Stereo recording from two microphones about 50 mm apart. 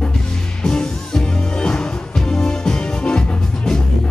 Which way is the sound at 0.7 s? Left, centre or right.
Centre.